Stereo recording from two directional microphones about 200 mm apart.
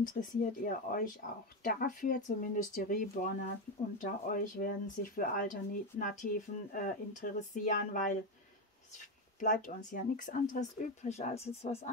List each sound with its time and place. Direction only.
0.0 s speech: 45° left (ahead or behind)
9.4 s speech: 40° left (ahead or behind)